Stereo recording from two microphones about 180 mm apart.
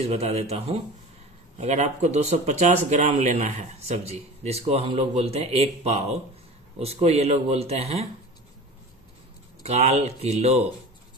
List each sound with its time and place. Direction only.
0.0 s speech: 35° right (ahead or behind)
9.6 s speech: 35° right (ahead or behind)